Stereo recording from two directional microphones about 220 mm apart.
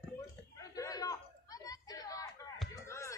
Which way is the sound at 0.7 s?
15° left (ahead or behind).